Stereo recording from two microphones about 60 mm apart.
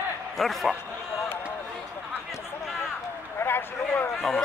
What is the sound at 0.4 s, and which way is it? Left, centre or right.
Speech, centre.